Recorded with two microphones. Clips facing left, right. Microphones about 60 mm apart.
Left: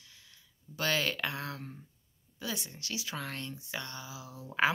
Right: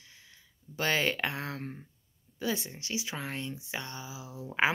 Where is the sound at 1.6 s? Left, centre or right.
Right.